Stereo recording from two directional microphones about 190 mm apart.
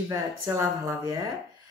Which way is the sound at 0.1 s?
15° right (ahead or behind).